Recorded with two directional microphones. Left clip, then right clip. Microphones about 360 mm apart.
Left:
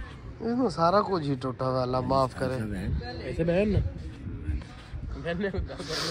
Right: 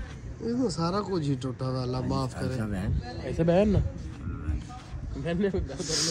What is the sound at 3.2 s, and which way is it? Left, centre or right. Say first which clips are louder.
Speech: right 2 dB; right.